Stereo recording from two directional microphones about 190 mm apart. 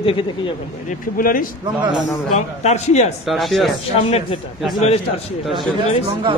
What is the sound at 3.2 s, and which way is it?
Speech, centre (ahead or behind).